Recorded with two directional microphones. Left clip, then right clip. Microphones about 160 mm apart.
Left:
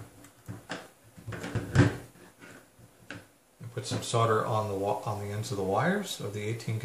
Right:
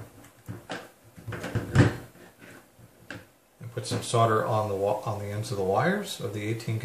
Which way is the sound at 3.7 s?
Centre (ahead or behind).